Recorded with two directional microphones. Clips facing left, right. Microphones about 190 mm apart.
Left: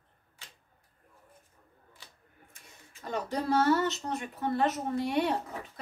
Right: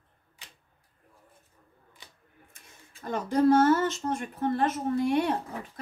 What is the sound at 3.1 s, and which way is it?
Speech, 50° right (ahead or behind).